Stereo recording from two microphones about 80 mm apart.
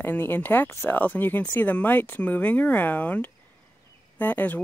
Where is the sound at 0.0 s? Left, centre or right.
Left.